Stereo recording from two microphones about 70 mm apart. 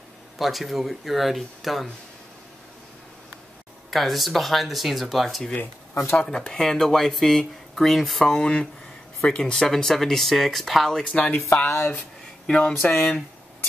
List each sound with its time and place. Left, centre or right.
0.4 s speech: centre
3.9 s speech: centre
11.6 s speech: left
12.4 s speech: centre